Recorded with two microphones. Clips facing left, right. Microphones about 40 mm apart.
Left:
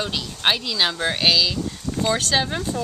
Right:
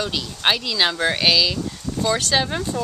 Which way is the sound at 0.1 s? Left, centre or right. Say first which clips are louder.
Right 1 dB; centre.